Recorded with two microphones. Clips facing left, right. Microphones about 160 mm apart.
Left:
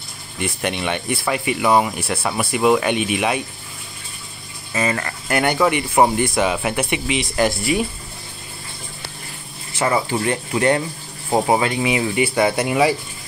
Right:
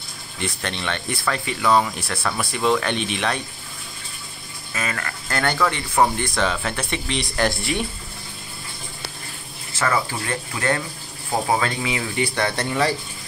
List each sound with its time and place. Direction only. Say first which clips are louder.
0.4 s speech: left 5 dB; 15° left (ahead or behind)
4.7 s speech: left 7 dB; 25° left (ahead or behind); by 7.8 s 5° left (ahead or behind)
9.8 s speech: left 4 dB; 20° left (ahead or behind)